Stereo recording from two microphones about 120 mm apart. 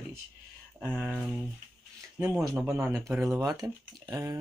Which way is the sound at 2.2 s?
20° right (ahead or behind).